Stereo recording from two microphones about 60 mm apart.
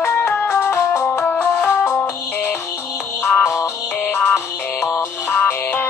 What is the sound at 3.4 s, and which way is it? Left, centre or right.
Music, left.